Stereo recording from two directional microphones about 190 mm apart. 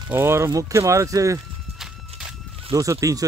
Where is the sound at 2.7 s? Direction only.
15° right (ahead or behind).